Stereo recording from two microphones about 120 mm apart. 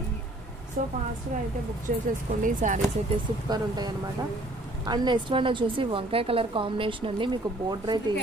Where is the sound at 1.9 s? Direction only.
90° right.